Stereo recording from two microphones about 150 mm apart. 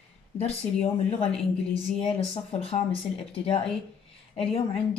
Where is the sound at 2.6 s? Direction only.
40° left (ahead or behind).